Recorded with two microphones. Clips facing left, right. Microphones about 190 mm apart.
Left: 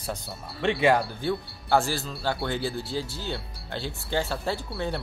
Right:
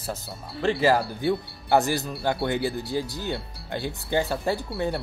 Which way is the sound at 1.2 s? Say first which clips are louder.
Right 3 dB; 20° right (ahead or behind).